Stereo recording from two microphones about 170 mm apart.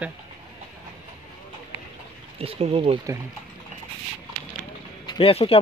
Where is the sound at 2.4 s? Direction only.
35° right (ahead or behind).